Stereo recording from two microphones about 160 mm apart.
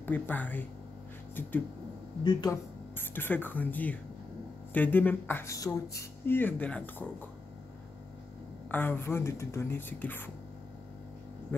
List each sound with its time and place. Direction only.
0.0 s speech: 10° left (ahead or behind)
2.2 s speech: 25° left (ahead or behind)
3.0 s speech: 10° left (ahead or behind)
8.6 s speech: 10° left (ahead or behind)